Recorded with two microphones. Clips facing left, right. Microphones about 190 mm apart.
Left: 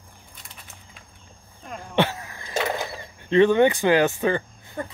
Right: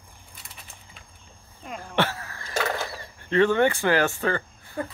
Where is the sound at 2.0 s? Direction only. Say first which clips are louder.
Left 3 dB; 15° left (ahead or behind).